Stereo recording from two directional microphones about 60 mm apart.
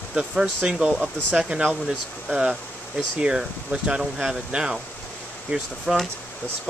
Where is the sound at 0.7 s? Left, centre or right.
Centre.